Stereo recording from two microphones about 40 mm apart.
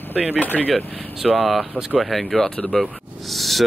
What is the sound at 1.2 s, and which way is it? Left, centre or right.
Speech, centre.